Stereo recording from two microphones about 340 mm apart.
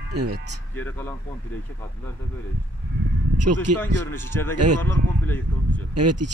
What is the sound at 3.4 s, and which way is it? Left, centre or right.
Speech, right.